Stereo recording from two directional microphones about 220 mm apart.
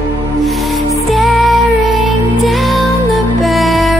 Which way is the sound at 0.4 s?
Centre (ahead or behind).